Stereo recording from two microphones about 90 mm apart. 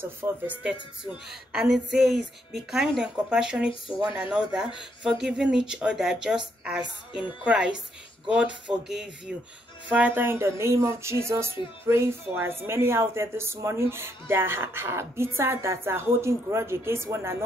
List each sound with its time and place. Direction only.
0.2 s speech: 25° right (ahead or behind)
1.5 s a woman's voice: 5° right (ahead or behind)
10.2 s speech: 30° right (ahead or behind)